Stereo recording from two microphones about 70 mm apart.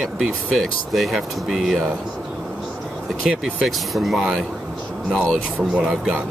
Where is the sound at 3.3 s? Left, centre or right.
Centre.